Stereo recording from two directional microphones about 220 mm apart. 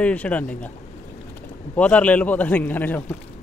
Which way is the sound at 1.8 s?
5° left (ahead or behind).